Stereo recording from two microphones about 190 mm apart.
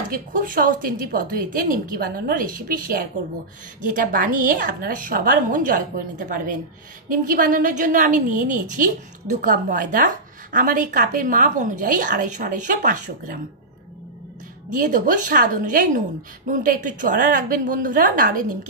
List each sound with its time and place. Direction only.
0.1 s a woman's voice: 45° right (ahead or behind)
14.7 s a woman's voice: 45° right (ahead or behind)